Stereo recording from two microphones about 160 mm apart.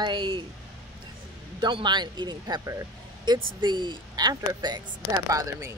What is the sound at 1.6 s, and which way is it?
Speech, 30° right (ahead or behind).